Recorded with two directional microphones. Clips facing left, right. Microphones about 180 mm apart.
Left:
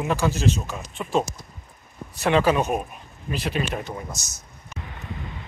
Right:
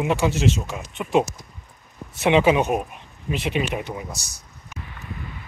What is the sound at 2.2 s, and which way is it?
Speech, 15° right (ahead or behind).